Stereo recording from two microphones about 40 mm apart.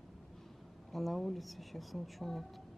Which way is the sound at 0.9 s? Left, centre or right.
Centre.